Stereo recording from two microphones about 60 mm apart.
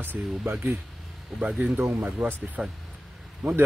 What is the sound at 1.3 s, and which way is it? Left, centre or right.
Speech, centre.